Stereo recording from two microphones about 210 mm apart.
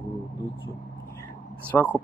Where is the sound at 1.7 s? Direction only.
5° left (ahead or behind).